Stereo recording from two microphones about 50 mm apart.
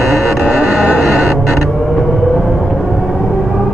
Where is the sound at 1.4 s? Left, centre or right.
Centre.